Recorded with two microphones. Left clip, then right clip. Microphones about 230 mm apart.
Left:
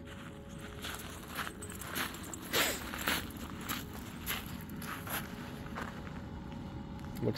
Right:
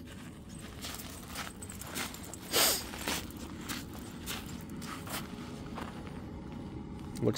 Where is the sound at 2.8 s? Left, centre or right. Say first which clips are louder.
Left 2 dB; centre.